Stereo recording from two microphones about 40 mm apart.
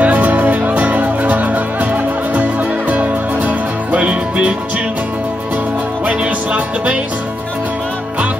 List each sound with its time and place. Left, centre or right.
0.0 s music: right
2.9 s music: right
6.0 s music: right